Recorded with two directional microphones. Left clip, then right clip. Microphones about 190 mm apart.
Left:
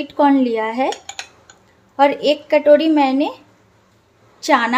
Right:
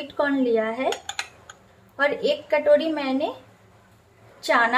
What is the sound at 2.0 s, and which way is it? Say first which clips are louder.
Speech: left 8 dB; 40° left (ahead or behind).